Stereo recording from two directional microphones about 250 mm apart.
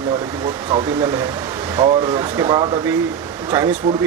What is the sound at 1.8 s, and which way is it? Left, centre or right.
Speech, centre.